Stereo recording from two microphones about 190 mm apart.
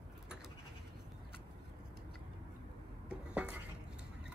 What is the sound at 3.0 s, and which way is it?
Dishes, 5° right (ahead or behind).